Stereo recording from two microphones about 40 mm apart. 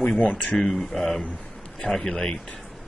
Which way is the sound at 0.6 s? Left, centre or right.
Centre.